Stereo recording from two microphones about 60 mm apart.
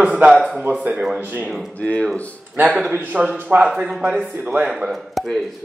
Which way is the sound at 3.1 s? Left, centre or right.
Centre.